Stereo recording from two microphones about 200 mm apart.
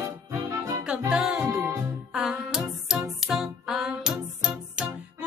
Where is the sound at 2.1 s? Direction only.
5° right (ahead or behind).